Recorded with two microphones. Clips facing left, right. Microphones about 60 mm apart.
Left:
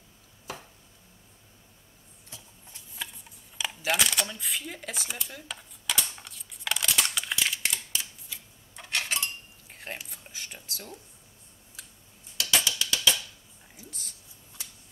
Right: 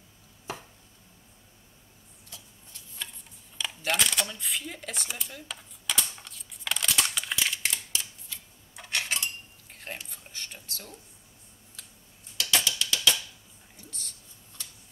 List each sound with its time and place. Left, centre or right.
3.5 s camera: centre
8.8 s cutlery: centre
12.4 s mechanisms: centre
13.7 s a sound: centre